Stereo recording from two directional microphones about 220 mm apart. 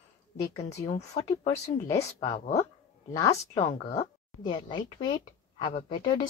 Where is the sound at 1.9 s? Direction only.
15° left (ahead or behind).